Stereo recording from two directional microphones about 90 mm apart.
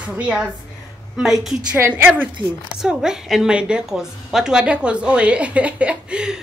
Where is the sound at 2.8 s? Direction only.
5° right (ahead or behind).